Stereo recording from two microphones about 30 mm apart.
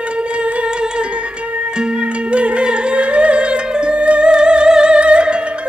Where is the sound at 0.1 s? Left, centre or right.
Right.